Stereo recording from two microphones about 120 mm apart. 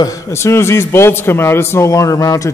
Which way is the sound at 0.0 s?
25° left (ahead or behind).